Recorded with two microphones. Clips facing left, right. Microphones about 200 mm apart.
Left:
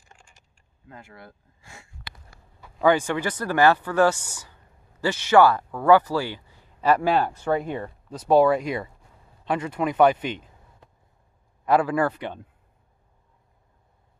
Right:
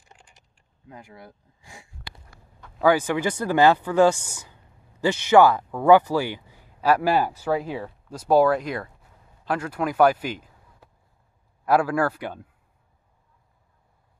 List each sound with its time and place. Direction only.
0.0 s a sound: 20° right (ahead or behind)
0.8 s speech: 15° right (ahead or behind)
2.8 s speech: 5° right (ahead or behind)
6.8 s speech: 5° right (ahead or behind)